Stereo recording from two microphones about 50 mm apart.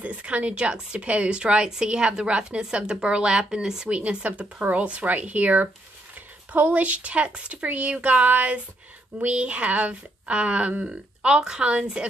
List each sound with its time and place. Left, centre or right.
0.0 s a woman's voice: right